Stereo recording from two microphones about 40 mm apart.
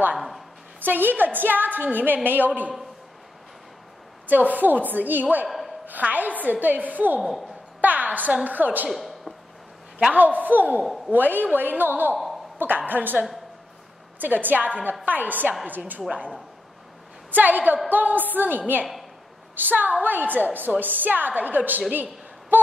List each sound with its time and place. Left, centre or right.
0.7 s a woman's voice: right
4.3 s a woman's voice: right
8.9 s a woman's voice: centre
10.1 s a woman's voice: right
14.2 s a woman's voice: right
17.3 s a woman's voice: right
21.9 s a sound: right